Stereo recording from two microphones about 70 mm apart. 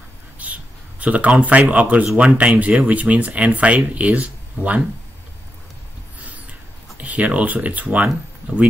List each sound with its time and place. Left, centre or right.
0.4 s a sound: right
2.1 s speech: centre
7.0 s speech: right